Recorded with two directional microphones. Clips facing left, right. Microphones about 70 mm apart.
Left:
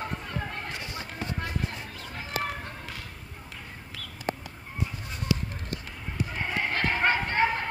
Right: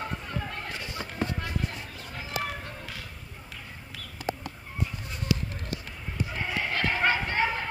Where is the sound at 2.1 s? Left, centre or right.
Left.